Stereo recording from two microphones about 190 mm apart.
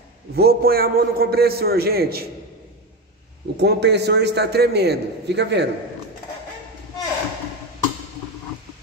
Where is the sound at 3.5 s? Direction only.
60° right (ahead or behind).